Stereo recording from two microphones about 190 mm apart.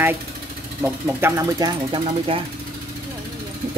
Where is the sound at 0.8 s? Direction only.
15° right (ahead or behind).